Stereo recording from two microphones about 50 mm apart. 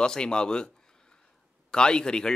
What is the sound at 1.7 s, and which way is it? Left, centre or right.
Speech, centre.